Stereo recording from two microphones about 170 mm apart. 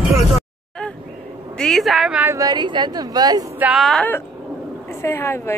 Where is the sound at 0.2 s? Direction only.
Centre (ahead or behind).